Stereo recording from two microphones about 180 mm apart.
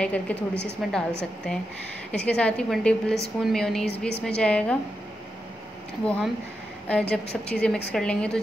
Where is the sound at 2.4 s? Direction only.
5° left (ahead or behind).